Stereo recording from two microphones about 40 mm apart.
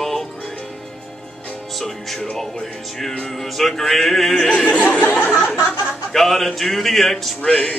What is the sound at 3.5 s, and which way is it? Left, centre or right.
Speech, centre.